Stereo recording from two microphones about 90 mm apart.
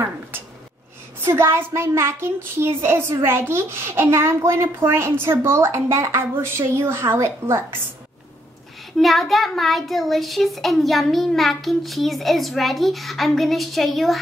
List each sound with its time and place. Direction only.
1.2 s a child's voice: 30° right (ahead or behind)
8.9 s a child's voice: centre (ahead or behind)